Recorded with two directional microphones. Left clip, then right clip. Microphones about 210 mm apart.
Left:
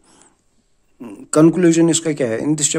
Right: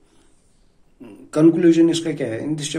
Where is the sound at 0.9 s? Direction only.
55° left (ahead or behind).